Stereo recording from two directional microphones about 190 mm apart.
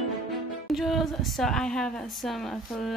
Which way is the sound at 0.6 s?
Centre (ahead or behind).